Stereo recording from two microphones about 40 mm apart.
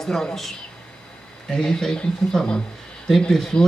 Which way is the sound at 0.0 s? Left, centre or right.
Centre.